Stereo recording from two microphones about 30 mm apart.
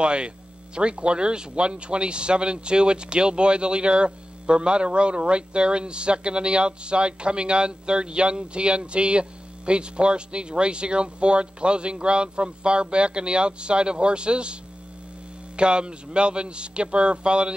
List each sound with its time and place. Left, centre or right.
0.0 s speech: right